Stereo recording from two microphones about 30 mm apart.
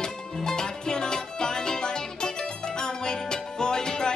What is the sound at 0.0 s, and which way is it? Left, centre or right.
Music, left.